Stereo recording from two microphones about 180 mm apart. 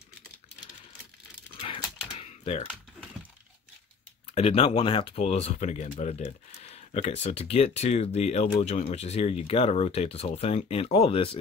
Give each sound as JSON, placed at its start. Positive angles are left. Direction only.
{"t": 1.6, "sound": "typewriter", "side_deg": 30}
{"t": 4.4, "sound": "speech", "side_deg": 35}